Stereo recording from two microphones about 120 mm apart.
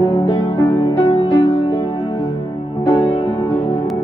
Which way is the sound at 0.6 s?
25° left (ahead or behind).